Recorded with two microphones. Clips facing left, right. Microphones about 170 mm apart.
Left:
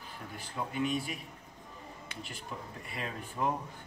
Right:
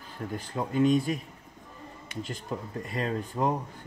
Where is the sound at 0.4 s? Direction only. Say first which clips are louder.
Right 8 dB; 40° right (ahead or behind).